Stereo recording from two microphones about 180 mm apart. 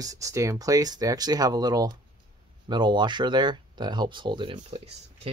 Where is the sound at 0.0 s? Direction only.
20° right (ahead or behind).